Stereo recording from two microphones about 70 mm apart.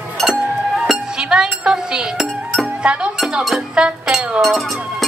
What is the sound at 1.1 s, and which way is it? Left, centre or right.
Chink, centre.